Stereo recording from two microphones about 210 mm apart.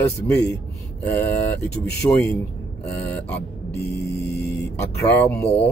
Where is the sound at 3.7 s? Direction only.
50° left (ahead or behind).